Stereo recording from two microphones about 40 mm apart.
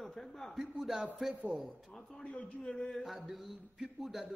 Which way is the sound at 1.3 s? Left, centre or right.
Right.